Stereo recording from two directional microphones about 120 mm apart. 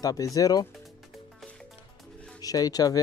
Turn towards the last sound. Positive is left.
turn(degrees=30)  # may be behind; listen again after turning